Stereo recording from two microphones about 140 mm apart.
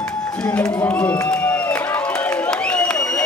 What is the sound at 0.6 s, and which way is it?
Run, 20° left (ahead or behind).